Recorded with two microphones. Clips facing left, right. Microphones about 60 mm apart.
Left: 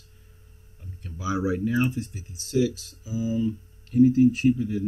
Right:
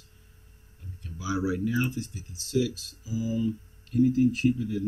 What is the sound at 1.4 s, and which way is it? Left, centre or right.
Speech, left.